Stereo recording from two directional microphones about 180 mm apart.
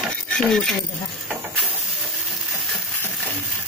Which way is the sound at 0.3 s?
5° left (ahead or behind).